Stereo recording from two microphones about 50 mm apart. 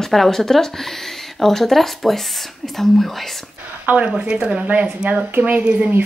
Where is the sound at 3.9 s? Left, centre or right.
Right.